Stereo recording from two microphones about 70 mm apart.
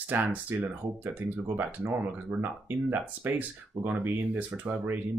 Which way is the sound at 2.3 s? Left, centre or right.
Right.